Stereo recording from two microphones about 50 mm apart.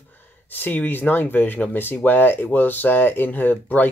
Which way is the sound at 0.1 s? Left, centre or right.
Left.